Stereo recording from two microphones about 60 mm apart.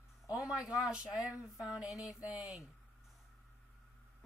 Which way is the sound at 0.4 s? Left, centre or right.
Centre.